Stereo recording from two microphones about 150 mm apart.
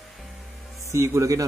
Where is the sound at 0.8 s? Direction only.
20° right (ahead or behind).